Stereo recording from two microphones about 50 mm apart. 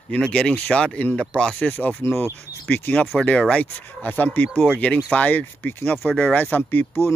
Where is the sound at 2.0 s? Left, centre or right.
Left.